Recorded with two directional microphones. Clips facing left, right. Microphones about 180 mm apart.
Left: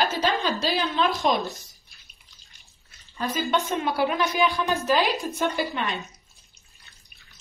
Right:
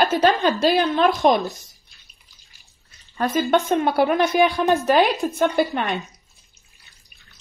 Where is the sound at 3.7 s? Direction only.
55° right (ahead or behind).